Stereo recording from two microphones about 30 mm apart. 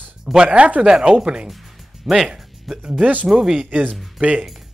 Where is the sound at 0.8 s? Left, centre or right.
Right.